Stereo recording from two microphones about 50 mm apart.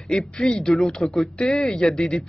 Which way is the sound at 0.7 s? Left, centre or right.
Centre.